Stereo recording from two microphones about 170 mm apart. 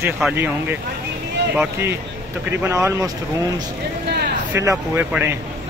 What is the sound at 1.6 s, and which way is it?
Speech, 15° right (ahead or behind).